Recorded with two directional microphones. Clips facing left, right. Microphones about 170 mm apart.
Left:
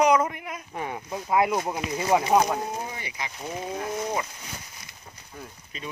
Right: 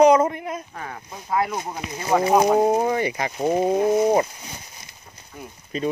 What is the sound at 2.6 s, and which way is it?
Speech, 65° right (ahead or behind).